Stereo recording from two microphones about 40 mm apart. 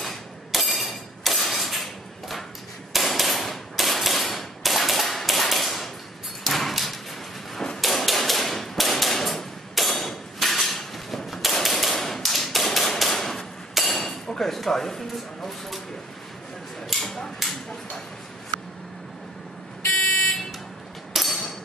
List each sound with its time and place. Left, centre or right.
0.0 s a sound: centre
7.8 s hammer: centre
11.4 s tap: centre
13.4 s hammer: centre
13.9 s hammer: centre
14.7 s speech: centre
17.0 s a sound: centre
19.9 s buzzer: centre
21.1 s a sound: centre